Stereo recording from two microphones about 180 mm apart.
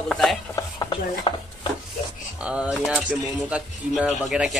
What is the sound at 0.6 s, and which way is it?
Chopping, 20° left (ahead or behind).